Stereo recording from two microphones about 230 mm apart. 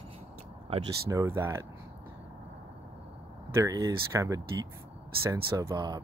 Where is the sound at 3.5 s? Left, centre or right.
Centre.